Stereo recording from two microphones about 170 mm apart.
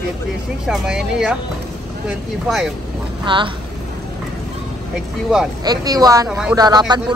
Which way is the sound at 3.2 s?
30° right (ahead or behind).